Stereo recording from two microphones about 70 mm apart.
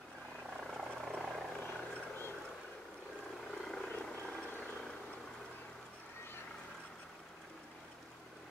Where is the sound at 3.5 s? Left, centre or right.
Centre.